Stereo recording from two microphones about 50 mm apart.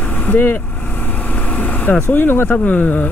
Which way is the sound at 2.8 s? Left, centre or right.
Left.